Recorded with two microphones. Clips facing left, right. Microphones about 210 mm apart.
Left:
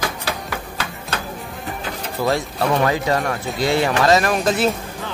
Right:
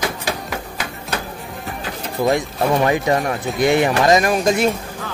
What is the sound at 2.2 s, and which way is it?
Speech, 15° right (ahead or behind).